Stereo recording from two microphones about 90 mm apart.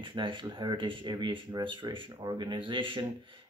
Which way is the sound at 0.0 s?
65° right (ahead or behind).